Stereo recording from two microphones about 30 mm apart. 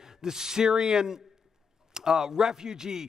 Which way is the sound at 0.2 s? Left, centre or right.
Centre.